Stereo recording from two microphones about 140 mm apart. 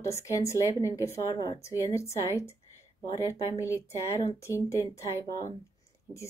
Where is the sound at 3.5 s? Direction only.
20° left (ahead or behind).